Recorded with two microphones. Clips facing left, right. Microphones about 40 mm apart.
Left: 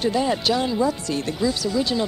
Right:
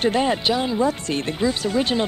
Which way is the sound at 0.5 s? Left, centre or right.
Centre.